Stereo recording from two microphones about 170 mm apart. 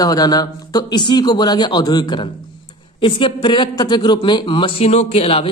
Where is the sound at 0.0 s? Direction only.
20° left (ahead or behind).